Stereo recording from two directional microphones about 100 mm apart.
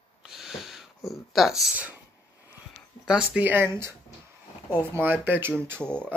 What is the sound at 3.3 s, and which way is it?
Speech, 20° right (ahead or behind).